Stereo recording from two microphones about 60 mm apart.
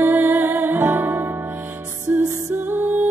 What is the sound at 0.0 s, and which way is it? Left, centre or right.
Music, right.